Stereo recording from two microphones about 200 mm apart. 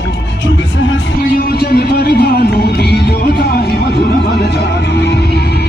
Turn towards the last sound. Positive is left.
turn(degrees=55)  # may be behind; listen again after turning